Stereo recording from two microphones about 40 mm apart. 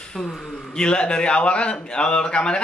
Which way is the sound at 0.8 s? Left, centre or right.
Left.